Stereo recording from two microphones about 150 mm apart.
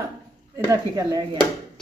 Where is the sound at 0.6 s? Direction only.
25° right (ahead or behind).